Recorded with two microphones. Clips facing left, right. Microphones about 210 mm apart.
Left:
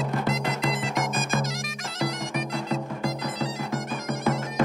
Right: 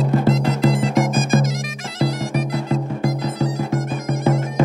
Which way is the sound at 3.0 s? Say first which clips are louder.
Right 7 dB; 45° right (ahead or behind).